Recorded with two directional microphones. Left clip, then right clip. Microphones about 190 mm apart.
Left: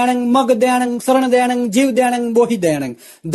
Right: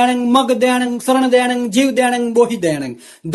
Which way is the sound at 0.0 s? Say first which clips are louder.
Right 1 dB; 30° left (ahead or behind).